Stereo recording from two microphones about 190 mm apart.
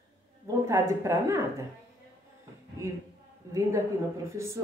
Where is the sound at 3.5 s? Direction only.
15° right (ahead or behind).